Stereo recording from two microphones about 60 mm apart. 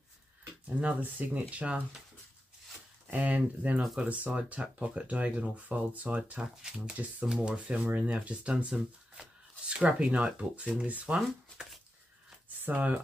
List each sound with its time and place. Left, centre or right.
0.7 s speech: right
3.1 s speech: right
12.6 s speech: right